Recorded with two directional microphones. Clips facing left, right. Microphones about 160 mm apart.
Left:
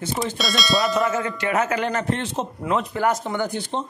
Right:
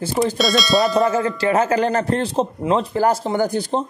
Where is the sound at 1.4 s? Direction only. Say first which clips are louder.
Right 6 dB; 30° right (ahead or behind).